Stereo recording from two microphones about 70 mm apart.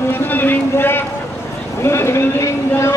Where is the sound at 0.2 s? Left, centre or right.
Left.